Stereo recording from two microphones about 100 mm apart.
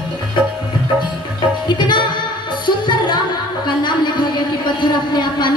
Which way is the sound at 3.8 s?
50° left (ahead or behind).